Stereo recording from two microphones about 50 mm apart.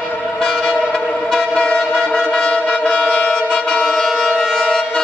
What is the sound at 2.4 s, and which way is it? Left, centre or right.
Shofar, left.